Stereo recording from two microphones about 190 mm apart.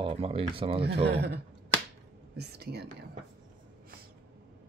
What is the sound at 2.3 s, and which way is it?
Whispering, 60° right (ahead or behind).